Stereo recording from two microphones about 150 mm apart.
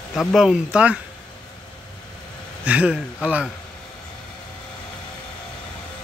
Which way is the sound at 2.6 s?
10° right (ahead or behind).